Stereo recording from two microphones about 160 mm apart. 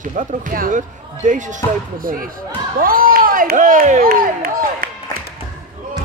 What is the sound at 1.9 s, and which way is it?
Speech, 60° right (ahead or behind).